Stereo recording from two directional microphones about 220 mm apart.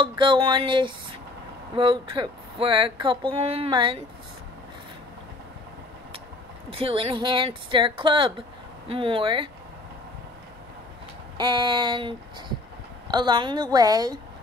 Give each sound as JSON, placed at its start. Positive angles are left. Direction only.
{"t": 0.1, "sound": "speech", "side_deg": -20}
{"t": 6.8, "sound": "speech", "side_deg": -25}
{"t": 11.3, "sound": "speech", "side_deg": -20}